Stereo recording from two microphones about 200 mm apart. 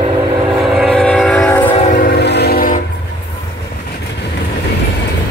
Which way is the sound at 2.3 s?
55° left (ahead or behind).